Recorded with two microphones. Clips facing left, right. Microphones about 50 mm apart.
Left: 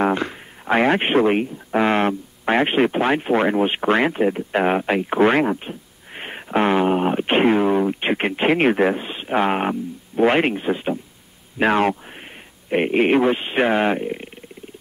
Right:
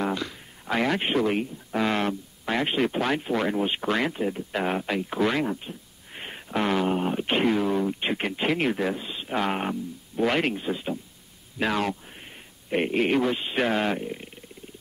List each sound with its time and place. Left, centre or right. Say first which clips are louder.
0.0 s speech: left 8 dB; left
12.6 s speech: left 6 dB; left